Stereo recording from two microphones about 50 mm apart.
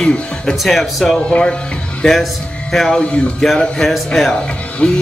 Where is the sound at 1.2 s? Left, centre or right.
Centre.